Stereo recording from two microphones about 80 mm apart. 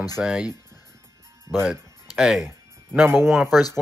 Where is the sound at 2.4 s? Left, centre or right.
Right.